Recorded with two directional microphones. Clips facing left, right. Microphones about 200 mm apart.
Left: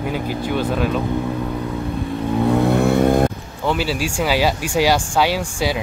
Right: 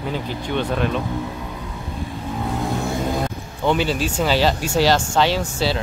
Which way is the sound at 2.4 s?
65° left (ahead or behind).